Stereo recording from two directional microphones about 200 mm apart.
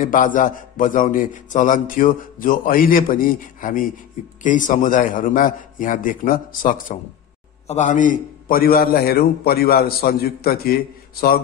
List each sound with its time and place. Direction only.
0.0 s a man's voice: 40° left (ahead or behind)